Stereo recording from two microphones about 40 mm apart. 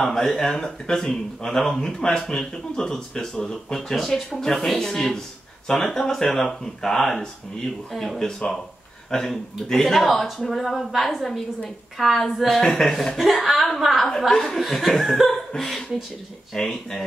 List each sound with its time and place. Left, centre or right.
0.0 s a man's voice: centre
8.3 s a man's voice: centre
14.3 s a man's voice: centre